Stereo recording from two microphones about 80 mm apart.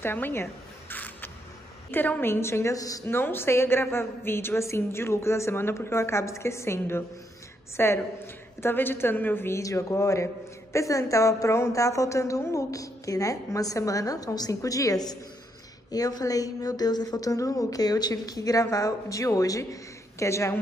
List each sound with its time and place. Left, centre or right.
0.0 s a sound: left
1.9 s a woman's voice: left
2.7 s a man's voice: left
3.1 s a woman's voice: left
9.6 s a man's voice: left